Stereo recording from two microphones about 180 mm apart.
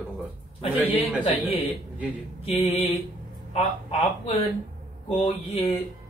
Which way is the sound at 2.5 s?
35° left (ahead or behind).